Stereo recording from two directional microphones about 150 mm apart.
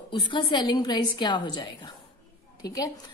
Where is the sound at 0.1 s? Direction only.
30° left (ahead or behind).